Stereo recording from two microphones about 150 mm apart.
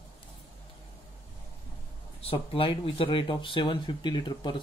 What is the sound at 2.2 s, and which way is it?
Speech, 35° left (ahead or behind).